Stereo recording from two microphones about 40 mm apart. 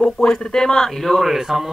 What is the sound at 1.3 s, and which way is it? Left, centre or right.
Speech, centre.